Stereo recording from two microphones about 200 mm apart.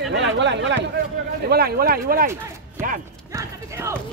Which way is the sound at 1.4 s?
50° right (ahead or behind).